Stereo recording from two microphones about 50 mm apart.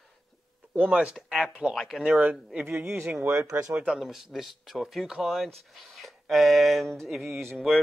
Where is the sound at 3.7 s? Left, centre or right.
Right.